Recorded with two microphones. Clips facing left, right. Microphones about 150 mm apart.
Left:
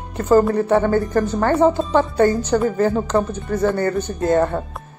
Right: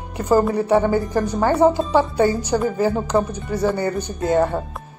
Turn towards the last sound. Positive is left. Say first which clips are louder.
# left 1 dB
turn(degrees=-10)  # may be behind; listen again after turning